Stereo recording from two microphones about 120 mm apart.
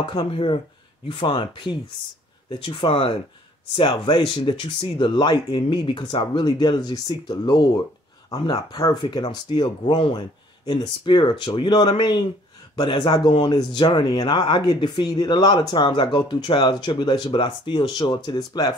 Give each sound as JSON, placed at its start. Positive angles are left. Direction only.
{"t": 0.0, "sound": "speech", "side_deg": 40}
{"t": 13.3, "sound": "speech", "side_deg": 65}
{"t": 13.6, "sound": "speech", "side_deg": 40}